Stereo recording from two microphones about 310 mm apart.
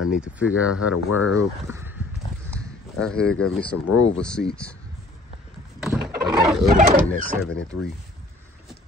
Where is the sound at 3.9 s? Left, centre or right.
Left.